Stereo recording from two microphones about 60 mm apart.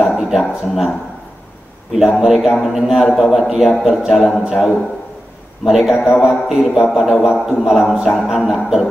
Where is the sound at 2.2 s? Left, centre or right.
Centre.